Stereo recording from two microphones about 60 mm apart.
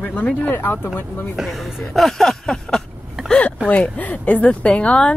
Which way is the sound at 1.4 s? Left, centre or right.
Centre.